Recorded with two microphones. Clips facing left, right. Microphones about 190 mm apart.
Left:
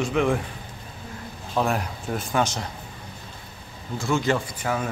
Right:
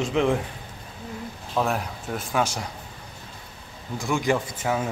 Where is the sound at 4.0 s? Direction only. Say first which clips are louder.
Even; 15° right (ahead or behind).